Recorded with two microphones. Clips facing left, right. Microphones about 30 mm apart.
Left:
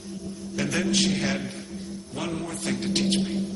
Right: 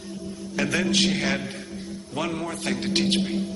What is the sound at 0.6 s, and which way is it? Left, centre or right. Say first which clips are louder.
Speech: right 2 dB; centre.